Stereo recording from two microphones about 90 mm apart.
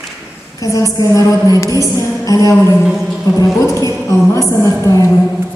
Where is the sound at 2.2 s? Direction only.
40° left (ahead or behind).